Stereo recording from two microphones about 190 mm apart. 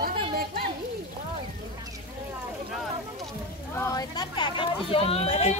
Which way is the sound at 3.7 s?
15° left (ahead or behind).